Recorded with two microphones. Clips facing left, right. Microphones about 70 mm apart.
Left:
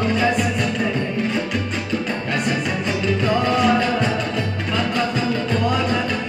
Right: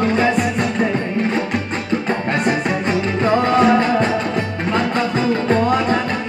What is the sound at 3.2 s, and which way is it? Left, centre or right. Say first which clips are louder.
Music: right 5 dB; right.